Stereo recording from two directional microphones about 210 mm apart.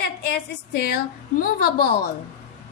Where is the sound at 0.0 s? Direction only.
50° left (ahead or behind).